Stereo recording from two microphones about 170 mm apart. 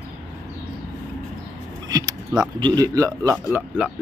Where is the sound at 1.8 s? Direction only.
20° right (ahead or behind).